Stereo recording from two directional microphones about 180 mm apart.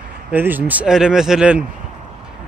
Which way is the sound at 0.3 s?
10° right (ahead or behind).